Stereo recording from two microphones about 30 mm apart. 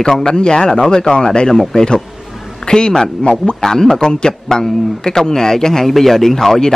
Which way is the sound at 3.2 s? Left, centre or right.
Left.